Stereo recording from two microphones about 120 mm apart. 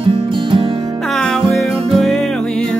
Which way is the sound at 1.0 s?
Centre (ahead or behind).